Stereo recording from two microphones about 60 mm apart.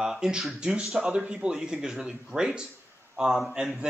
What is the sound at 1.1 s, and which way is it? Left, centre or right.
Speech, centre.